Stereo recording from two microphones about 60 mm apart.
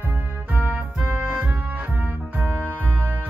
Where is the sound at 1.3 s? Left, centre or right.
Right.